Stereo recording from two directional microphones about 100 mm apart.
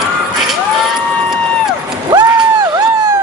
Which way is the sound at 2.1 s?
40° right (ahead or behind).